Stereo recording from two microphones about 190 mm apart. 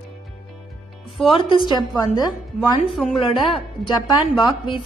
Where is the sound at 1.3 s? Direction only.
25° left (ahead or behind).